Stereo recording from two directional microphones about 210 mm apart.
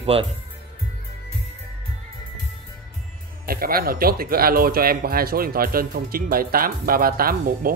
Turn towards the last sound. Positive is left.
turn(degrees=-45)  # may be behind; listen again after turning